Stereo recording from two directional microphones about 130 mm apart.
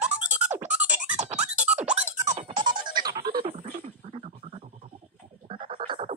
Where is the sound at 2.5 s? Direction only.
35° right (ahead or behind).